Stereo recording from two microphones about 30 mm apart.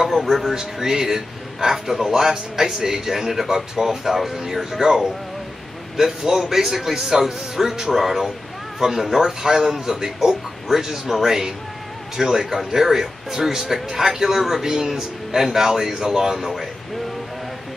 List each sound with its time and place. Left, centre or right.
0.0 s a man's voice: centre
3.4 s a man's voice: centre